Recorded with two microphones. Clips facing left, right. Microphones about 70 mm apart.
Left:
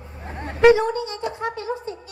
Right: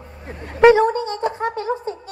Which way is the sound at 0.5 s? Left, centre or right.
Right.